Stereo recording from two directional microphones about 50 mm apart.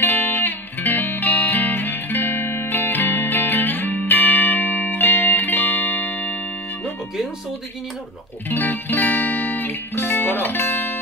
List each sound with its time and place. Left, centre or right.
0.0 s music: left
8.5 s music: left